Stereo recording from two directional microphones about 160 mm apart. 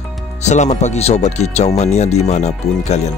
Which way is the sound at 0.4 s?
45° left (ahead or behind).